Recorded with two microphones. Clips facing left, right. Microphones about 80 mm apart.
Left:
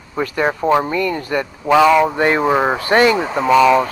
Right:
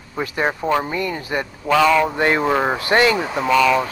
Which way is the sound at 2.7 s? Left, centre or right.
Left.